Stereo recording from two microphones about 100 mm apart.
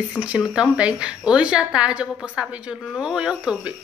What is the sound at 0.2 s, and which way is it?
Speech, 5° left (ahead or behind).